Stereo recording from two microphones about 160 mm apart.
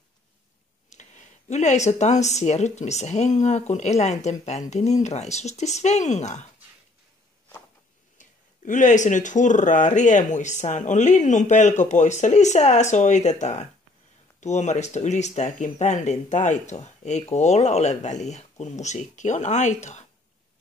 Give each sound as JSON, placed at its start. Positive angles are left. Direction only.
{"t": 0.8, "sound": "speech", "side_deg": 50}
{"t": 8.2, "sound": "speech", "side_deg": 50}